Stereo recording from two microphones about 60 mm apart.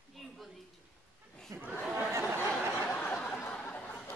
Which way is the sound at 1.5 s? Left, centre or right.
Right.